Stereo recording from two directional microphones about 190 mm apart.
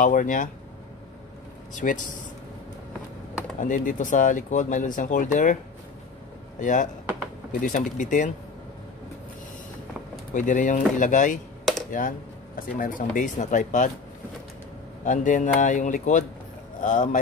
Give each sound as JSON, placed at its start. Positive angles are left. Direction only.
{"t": 0.0, "sound": "speech", "side_deg": 45}
{"t": 1.8, "sound": "speech", "side_deg": 45}
{"t": 3.5, "sound": "speech", "side_deg": 45}
{"t": 6.6, "sound": "speech", "side_deg": 40}
{"t": 10.3, "sound": "speech", "side_deg": 40}
{"t": 15.0, "sound": "speech", "side_deg": 45}